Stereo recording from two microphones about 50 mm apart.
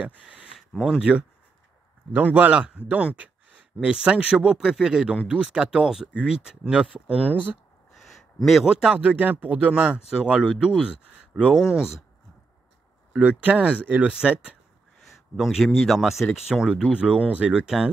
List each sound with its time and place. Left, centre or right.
0.0 s a sound: right
0.7 s speech: centre
2.1 s speech: right
2.5 s speech: right
7.9 s a sound: centre
8.6 s speech: centre
9.0 s speech: right
9.7 s speech: right
13.2 s speech: right
15.3 s speech: centre
16.9 s speech: right